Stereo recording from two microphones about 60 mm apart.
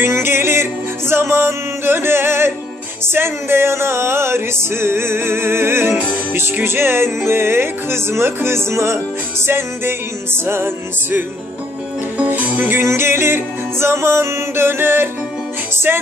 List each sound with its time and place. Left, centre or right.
0.0 s music: right
12.3 s music: right